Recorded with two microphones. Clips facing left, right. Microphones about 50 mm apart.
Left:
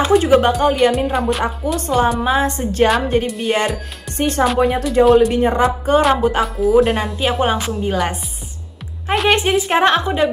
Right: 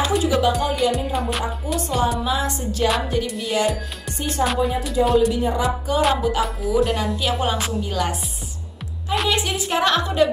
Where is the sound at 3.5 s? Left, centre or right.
Left.